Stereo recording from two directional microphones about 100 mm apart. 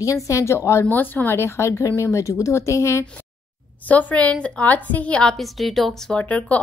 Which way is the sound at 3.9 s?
15° left (ahead or behind).